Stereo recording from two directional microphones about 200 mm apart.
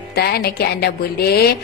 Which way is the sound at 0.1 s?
50° left (ahead or behind).